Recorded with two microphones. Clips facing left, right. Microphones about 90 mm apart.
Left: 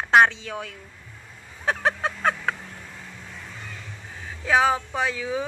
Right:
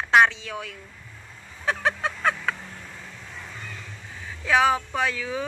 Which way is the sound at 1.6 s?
35° left (ahead or behind).